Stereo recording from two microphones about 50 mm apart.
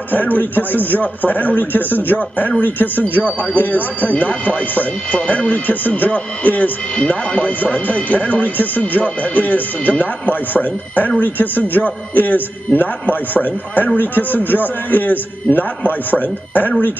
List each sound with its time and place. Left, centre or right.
0.1 s speech: left
7.0 s speech: left